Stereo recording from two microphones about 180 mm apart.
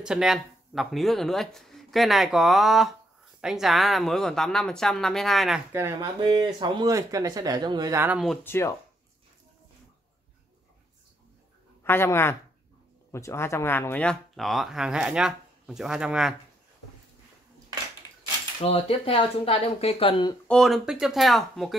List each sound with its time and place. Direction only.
0.0 s speech: 5° right (ahead or behind)
5.7 s speech: 15° right (ahead or behind)
8.5 s speech: 15° left (ahead or behind)
11.8 s speech: 15° left (ahead or behind); by 16.3 s 5° right (ahead or behind)
18.6 s speech: 30° left (ahead or behind)
20.4 s speech: centre (ahead or behind)